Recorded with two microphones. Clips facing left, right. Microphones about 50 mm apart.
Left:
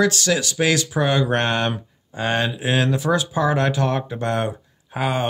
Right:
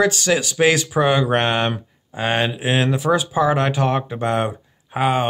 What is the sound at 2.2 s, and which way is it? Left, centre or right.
Speech, right.